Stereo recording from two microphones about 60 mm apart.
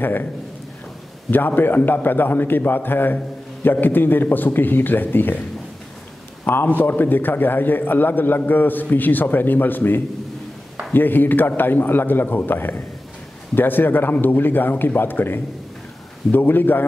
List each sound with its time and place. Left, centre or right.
0.0 s a man's voice: left
1.3 s a man's voice: left
6.4 s a man's voice: left